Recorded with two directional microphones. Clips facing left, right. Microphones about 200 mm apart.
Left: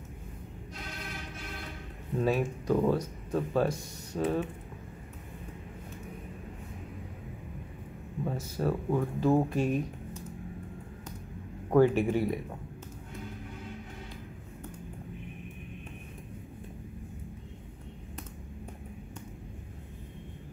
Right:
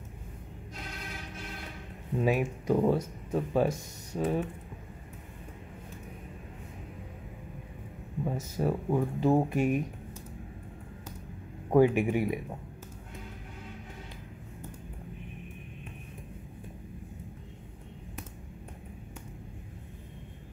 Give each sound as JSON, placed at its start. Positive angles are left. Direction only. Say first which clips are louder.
{"t": 2.2, "sound": "speech", "louder": "right 1 dB", "side_deg": -15}
{"t": 8.3, "sound": "speech", "louder": "right 1 dB", "side_deg": -15}
{"t": 11.7, "sound": "speech", "louder": "even", "side_deg": -15}